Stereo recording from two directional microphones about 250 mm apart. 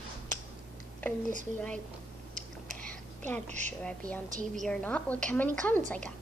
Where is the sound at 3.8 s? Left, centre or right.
Centre.